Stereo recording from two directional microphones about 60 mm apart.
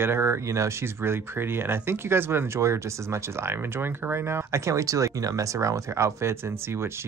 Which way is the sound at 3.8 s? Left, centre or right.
Right.